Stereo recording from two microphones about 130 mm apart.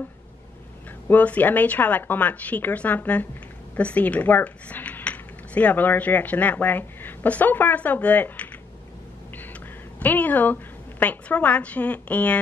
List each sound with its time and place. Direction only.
1.0 s speech: 10° left (ahead or behind)
9.5 s a woman's voice: 10° left (ahead or behind)